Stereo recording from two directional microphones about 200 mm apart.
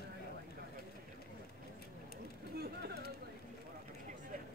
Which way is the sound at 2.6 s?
50° right (ahead or behind).